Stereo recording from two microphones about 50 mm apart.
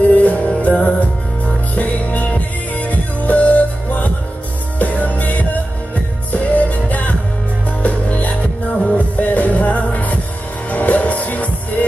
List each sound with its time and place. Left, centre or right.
0.1 s music: left